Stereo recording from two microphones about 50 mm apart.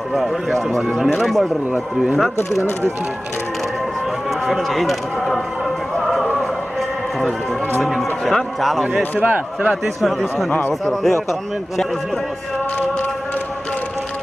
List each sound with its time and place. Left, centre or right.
0.1 s speech: centre
4.5 s speech: centre
7.8 s speech: centre
9.2 s a man's voice: right
10.7 s speech: centre